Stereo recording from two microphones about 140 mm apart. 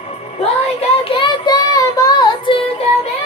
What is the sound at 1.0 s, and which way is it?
Child singing, 35° left (ahead or behind).